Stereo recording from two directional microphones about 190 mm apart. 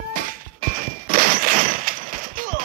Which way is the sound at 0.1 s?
45° right (ahead or behind).